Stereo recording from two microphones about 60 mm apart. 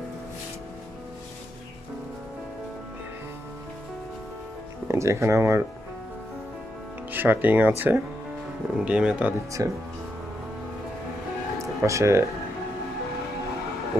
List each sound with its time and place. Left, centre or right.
4.8 s speech: right
7.1 s speech: right
9.6 s speech: right
11.5 s music: right